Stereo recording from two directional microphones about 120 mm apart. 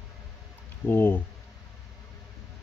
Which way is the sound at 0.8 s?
15° left (ahead or behind).